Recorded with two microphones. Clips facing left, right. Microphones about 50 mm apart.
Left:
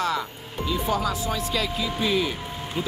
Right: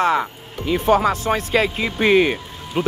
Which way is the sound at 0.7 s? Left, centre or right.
Right.